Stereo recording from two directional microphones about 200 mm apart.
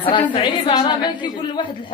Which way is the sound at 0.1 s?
25° left (ahead or behind).